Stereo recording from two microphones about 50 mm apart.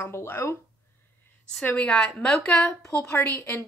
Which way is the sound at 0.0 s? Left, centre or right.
Left.